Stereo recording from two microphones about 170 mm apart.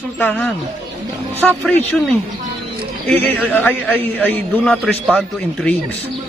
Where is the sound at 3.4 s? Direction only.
10° left (ahead or behind).